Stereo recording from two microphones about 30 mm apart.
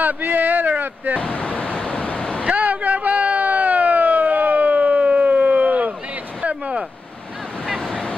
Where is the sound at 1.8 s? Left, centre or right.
Left.